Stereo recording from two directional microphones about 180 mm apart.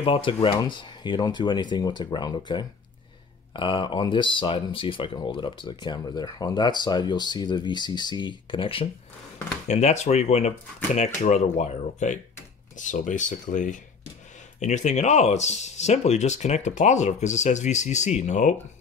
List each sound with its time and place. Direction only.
0.0 s speech: 30° left (ahead or behind)